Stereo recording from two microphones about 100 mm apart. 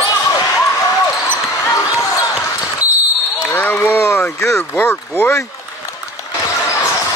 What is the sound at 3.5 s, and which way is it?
Speech, 15° left (ahead or behind).